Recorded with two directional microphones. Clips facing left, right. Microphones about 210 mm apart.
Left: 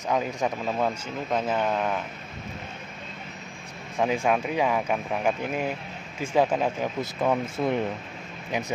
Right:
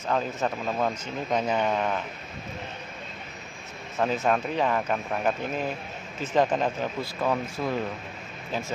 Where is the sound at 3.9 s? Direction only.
10° left (ahead or behind).